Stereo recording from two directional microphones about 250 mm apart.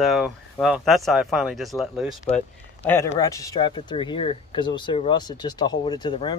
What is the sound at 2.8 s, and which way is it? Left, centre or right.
Speech, centre.